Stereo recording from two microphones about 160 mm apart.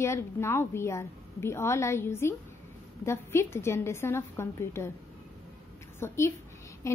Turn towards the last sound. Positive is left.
turn(degrees=20)  # may be behind; listen again after turning